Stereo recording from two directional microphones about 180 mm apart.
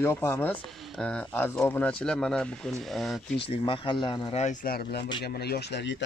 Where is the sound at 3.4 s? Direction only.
30° left (ahead or behind).